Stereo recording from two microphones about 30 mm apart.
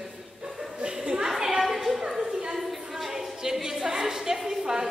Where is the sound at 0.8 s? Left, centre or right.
Right.